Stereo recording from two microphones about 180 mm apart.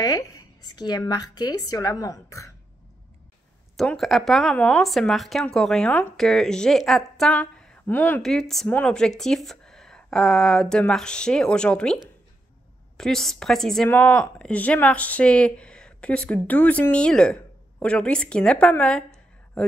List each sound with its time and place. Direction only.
0.7 s speech: 20° left (ahead or behind)
3.7 s a woman's voice: centre (ahead or behind)